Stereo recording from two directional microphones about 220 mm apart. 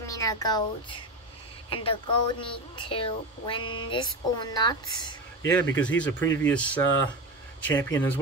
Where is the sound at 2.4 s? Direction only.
25° left (ahead or behind).